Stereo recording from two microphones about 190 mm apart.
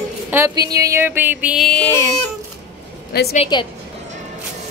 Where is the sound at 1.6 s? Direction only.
10° left (ahead or behind).